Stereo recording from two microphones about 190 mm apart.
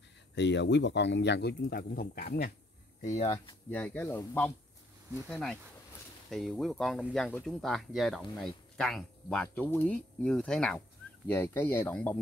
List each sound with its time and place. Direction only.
0.3 s speech: 65° left (ahead or behind)
3.0 s speech: 40° left (ahead or behind)
3.7 s speech: 10° left (ahead or behind)